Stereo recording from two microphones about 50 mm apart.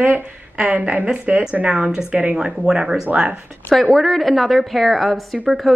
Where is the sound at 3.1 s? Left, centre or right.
Right.